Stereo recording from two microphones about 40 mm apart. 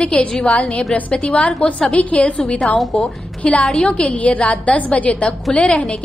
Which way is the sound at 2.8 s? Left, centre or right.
Centre.